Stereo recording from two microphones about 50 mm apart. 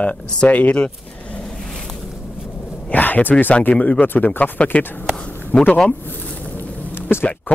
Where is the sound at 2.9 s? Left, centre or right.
Left.